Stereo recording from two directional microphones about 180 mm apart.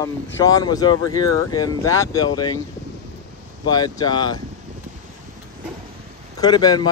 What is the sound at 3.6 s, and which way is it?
Speech, 20° left (ahead or behind).